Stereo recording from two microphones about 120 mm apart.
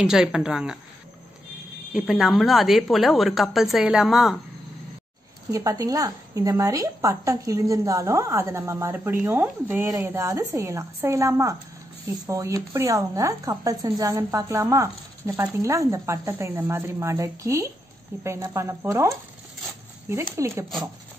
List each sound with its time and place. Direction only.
0.0 s a woman's voice: 5° right (ahead or behind)
1.9 s a woman's voice: 5° right (ahead or behind)
5.5 s a woman's voice: 30° right (ahead or behind)
20.3 s a woman's voice: 25° right (ahead or behind)